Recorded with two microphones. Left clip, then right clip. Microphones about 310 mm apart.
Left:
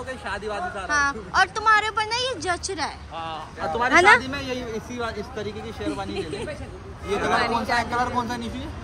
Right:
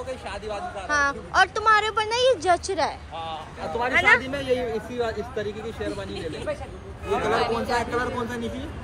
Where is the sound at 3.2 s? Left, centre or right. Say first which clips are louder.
Left 4 dB; left.